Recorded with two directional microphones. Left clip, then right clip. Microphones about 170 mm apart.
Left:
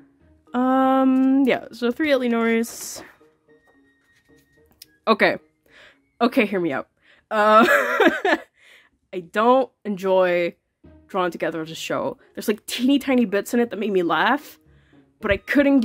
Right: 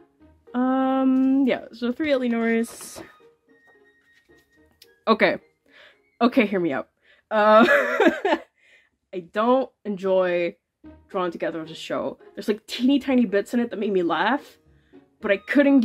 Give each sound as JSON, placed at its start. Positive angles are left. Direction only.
{"t": 0.5, "sound": "a sound", "side_deg": 35}
{"t": 2.8, "sound": "speech", "side_deg": 30}
{"t": 4.7, "sound": "music", "side_deg": 20}
{"t": 11.1, "sound": "speech", "side_deg": 50}